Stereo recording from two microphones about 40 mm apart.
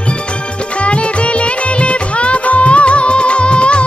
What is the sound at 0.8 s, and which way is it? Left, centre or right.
Music, left.